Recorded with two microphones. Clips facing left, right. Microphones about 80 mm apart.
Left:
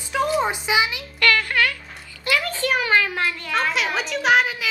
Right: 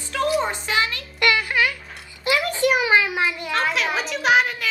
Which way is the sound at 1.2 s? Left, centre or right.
Centre.